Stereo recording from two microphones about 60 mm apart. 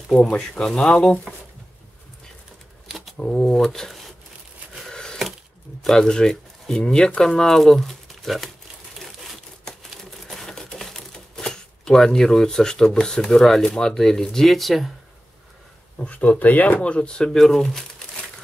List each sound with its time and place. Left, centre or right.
0.4 s speech: centre
1.3 s speech: right
3.2 s speech: centre
4.9 s a sound: centre
5.8 s speech: centre
9.7 s crumpling: centre
16.0 s speech: left; by 18.0 s centre